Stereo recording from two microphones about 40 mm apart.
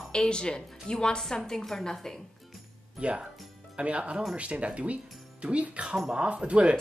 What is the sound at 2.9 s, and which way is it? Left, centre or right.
Speech, right.